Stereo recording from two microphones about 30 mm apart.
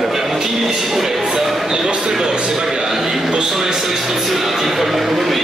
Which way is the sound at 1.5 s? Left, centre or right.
Centre.